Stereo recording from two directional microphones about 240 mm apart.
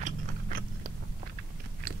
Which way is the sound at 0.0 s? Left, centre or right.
Right.